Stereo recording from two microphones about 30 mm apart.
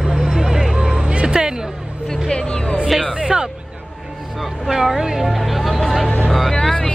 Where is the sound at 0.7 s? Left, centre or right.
Right.